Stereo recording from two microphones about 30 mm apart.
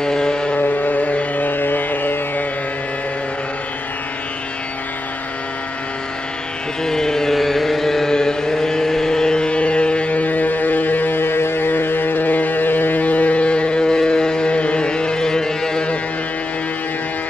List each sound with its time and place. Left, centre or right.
0.0 s vehicle: left
0.6 s carnatic music: left
6.8 s carnatic music: left
7.3 s carnatic music: centre
8.1 s chant: left
9.5 s a sound: left
10.2 s music: left
12.1 s a sound: left
13.4 s music: left
14.5 s music: left